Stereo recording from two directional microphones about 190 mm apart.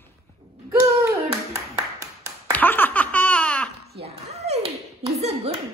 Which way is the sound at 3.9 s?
35° right (ahead or behind).